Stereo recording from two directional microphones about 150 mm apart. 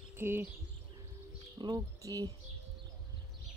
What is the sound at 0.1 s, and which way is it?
Speech, 15° right (ahead or behind).